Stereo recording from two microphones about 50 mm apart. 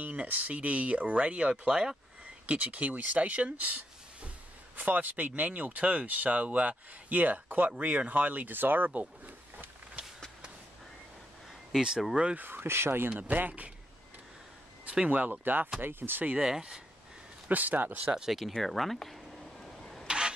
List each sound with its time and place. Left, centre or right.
0.0 s speech: right
9.2 s a sound: right
12.4 s speech: right
13.3 s speech: right
15.0 s speech: right
16.3 s speech: centre
17.5 s speech: right
18.1 s speech: centre
19.6 s vehicle: centre
20.1 s vehicle: centre